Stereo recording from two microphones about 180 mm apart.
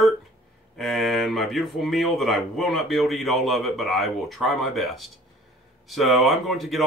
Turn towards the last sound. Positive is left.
turn(degrees=0)  # may be behind; listen again after turning